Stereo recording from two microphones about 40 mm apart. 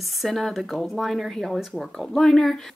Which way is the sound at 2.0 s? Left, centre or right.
Centre.